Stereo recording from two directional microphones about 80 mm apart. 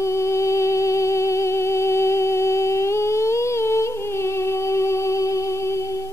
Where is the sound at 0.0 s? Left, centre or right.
Left.